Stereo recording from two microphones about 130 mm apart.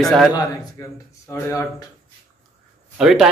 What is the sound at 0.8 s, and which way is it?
Speech, 25° left (ahead or behind).